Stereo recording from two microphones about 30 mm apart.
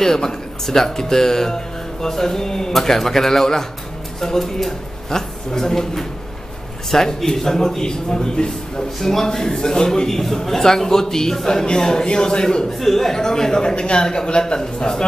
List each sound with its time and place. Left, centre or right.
0.0 s speech: centre
5.1 s a man's voice: centre
9.0 s speech: centre
9.5 s a man's voice: left
10.0 s a man's voice: centre; by 12.6 s left
12.8 s a man's voice: centre